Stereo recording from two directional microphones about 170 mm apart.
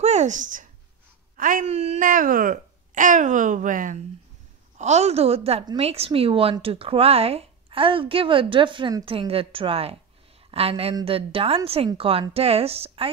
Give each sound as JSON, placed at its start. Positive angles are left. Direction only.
{"t": 0.0, "sound": "speech", "side_deg": -45}